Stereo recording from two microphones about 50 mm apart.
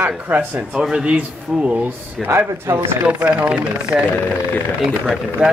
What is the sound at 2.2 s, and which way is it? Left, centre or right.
Speech, right.